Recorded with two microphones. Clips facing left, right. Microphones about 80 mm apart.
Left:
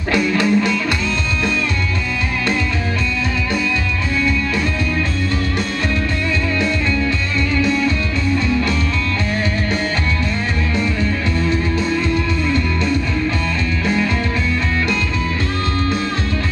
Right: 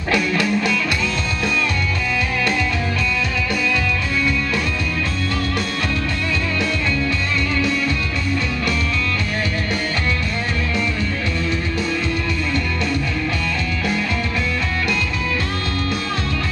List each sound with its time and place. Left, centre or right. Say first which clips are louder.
0.1 s music: left 3 dB; left